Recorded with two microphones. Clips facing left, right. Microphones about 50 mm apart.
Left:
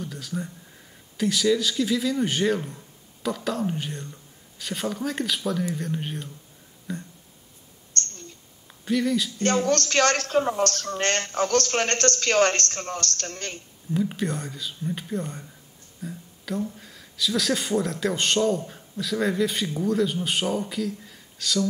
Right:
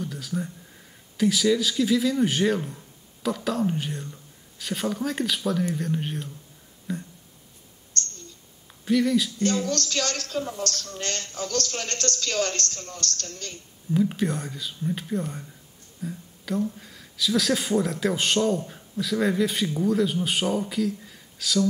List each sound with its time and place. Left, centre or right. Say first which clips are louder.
0.0 s a sound: right 2 dB; centre
1.1 s speech: right 1 dB; centre
7.9 s mouse: left 1 dB; left
8.8 s speech: right 2 dB; centre
9.4 s speech: left 3 dB; left
13.9 s speech: right 2 dB; centre